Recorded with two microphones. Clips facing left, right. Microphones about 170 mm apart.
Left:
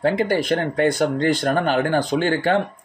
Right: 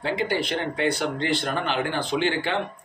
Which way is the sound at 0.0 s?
50° left (ahead or behind).